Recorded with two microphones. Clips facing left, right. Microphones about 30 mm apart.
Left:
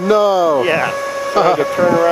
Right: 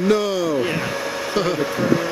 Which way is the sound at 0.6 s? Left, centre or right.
Left.